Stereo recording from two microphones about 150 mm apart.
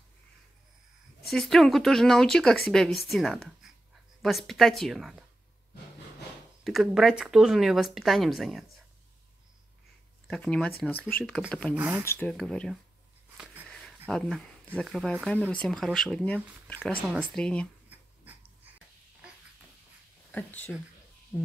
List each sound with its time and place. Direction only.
1.3 s speech: centre (ahead or behind)
3.6 s a sound: centre (ahead or behind)
4.2 s speech: centre (ahead or behind)
6.6 s speech: centre (ahead or behind)
10.2 s speech: 5° left (ahead or behind)
11.7 s speech: 10° right (ahead or behind)
12.0 s speech: 15° left (ahead or behind)
12.3 s speech: 5° left (ahead or behind)
20.2 s speech: 10° left (ahead or behind)